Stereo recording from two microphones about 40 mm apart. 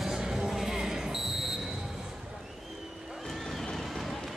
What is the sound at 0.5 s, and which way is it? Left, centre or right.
Basketball bounce, centre.